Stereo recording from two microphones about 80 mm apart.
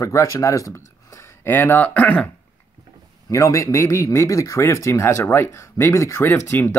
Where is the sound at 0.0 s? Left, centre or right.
Left.